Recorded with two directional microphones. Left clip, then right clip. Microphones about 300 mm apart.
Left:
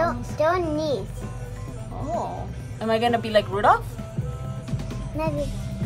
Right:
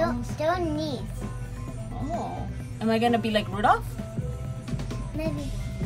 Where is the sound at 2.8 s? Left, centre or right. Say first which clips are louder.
Left 2 dB; centre.